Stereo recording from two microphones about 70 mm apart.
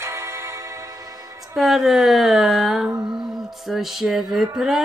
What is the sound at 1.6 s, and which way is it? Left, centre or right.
Speech, centre.